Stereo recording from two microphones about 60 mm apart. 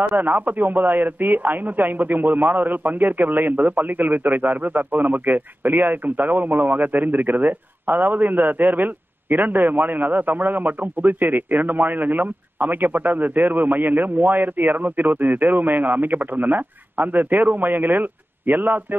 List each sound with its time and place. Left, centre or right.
0.0 s a man's voice: right